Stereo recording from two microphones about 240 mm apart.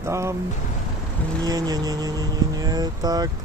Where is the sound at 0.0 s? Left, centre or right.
Centre.